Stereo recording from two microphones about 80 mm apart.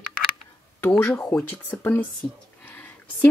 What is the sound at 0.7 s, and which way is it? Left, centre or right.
Speech, left.